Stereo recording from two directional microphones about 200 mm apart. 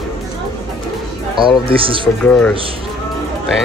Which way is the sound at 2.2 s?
5° left (ahead or behind).